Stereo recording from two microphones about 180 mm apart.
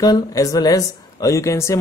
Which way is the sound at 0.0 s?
20° left (ahead or behind).